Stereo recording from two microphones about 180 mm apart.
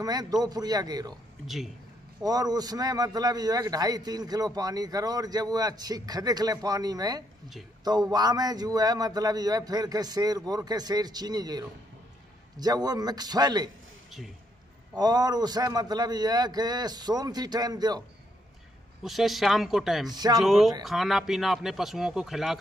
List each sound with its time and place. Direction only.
0.0 s a man's voice: 20° right (ahead or behind)
2.2 s a man's voice: 20° right (ahead or behind)
15.0 s a man's voice: 20° right (ahead or behind)
19.0 s speech: centre (ahead or behind)
20.1 s a man's voice: 20° right (ahead or behind)
20.3 s speech: centre (ahead or behind)